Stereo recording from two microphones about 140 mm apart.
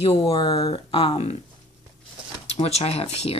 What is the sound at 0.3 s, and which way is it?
Speech, 35° left (ahead or behind).